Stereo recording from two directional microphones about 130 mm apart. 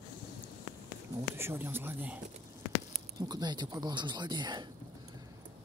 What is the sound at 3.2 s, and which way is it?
Speech, 30° right (ahead or behind).